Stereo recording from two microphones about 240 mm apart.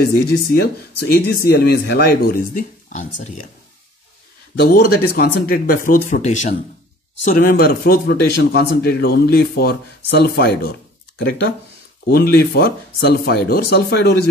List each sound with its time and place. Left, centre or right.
0.3 s speech: left
4.6 s speech: left